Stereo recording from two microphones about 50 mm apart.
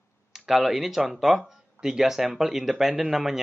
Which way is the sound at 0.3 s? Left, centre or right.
Centre.